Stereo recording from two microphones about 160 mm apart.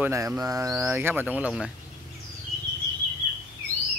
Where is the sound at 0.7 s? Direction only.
10° right (ahead or behind).